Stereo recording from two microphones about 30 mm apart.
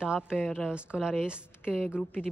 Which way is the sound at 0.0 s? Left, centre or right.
Right.